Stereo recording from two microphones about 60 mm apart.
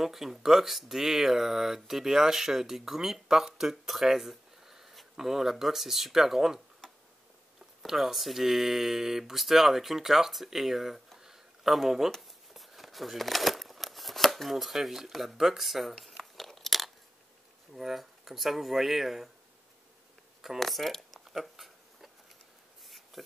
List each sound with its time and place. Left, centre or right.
0.0 s speech: centre
6.8 s tick-tock: centre
7.8 s speech: centre
12.1 s a sound: centre
17.7 s speech: centre
20.4 s speech: centre
21.2 s a sound: centre